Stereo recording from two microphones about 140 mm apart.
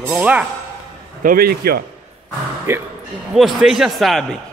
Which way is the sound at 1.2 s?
85° right.